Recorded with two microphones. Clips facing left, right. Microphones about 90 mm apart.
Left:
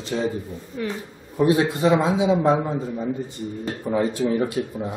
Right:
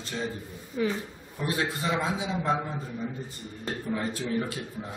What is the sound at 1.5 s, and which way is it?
A man's voice, 20° left (ahead or behind).